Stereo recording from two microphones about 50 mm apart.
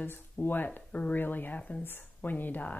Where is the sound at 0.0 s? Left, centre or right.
Left.